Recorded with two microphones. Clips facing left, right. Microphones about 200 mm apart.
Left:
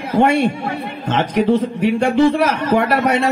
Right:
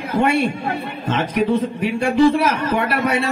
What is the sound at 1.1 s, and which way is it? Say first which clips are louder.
A man's voice: left 3 dB; 70° left (ahead or behind).